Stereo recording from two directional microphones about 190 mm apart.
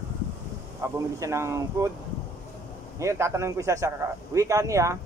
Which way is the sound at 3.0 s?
15° right (ahead or behind).